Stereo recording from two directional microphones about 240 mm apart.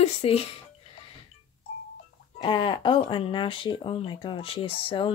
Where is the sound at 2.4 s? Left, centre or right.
Left.